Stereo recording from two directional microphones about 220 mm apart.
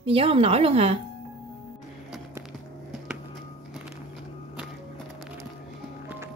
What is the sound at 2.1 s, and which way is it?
Music, centre (ahead or behind).